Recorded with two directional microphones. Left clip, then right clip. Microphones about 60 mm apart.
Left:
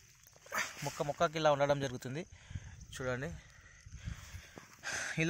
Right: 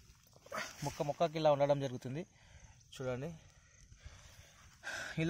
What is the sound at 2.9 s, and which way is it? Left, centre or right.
Speech, centre.